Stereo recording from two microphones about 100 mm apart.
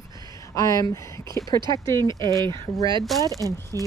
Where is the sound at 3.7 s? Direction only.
30° left (ahead or behind).